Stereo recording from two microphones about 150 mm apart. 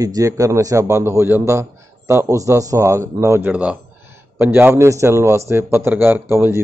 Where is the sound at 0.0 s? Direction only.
25° right (ahead or behind).